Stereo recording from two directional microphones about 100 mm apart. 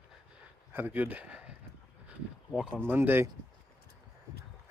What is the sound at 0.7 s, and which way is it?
Speech, 20° right (ahead or behind).